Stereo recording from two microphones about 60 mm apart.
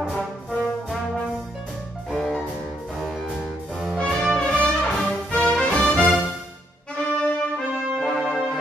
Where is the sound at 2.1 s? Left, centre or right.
Centre.